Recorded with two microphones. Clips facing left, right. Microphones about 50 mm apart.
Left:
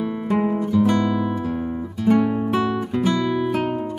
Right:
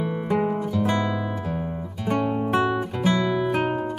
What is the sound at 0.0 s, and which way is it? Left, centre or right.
Guitar, centre.